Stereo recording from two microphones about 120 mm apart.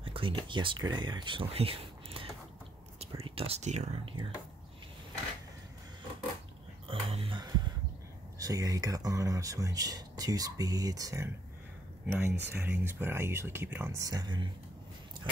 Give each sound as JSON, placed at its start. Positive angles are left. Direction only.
{"t": 0.0, "sound": "speech", "side_deg": -45}
{"t": 4.0, "sound": "speech", "side_deg": -45}
{"t": 6.9, "sound": "music", "side_deg": -50}
{"t": 7.3, "sound": "a sound", "side_deg": -35}
{"t": 8.4, "sound": "speech", "side_deg": -30}
{"t": 13.9, "sound": "speech", "side_deg": -30}